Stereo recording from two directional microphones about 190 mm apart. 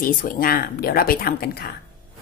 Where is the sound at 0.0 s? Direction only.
50° left (ahead or behind).